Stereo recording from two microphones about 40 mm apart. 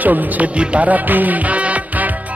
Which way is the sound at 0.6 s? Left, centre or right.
Right.